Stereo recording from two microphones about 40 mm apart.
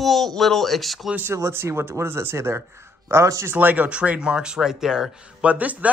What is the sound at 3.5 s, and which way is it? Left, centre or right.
Speech, right.